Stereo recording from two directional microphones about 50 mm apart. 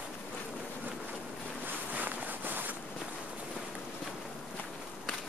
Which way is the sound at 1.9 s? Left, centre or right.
Right.